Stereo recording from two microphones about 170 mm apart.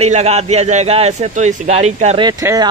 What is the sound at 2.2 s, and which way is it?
Speech, 20° right (ahead or behind).